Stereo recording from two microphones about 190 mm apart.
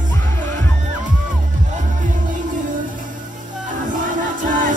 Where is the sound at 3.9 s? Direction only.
45° right (ahead or behind).